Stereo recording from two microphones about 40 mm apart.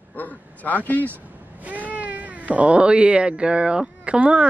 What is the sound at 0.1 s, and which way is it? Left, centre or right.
A man's voice, left.